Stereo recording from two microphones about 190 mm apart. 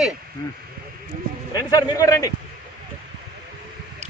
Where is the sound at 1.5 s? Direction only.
20° left (ahead or behind).